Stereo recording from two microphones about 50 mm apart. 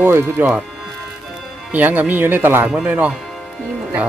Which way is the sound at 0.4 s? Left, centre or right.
Right.